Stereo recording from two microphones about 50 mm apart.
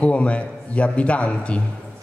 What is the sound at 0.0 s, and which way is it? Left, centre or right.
A man's voice, left.